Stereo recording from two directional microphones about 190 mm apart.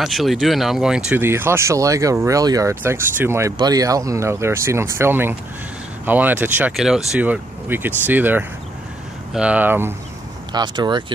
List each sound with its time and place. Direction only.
0.0 s speech: centre (ahead or behind)
10.5 s speech: 20° right (ahead or behind)